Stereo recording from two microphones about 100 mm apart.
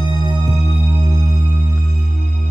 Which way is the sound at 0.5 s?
75° left (ahead or behind).